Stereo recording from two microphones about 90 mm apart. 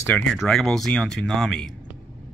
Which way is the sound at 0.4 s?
5° left (ahead or behind).